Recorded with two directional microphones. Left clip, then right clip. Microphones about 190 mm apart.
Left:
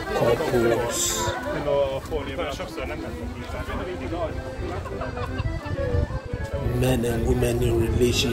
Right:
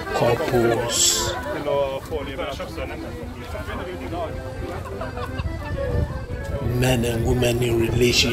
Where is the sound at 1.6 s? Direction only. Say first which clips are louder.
Even; 35° right (ahead or behind).